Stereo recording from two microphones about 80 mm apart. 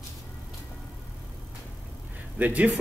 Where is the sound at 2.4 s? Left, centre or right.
Right.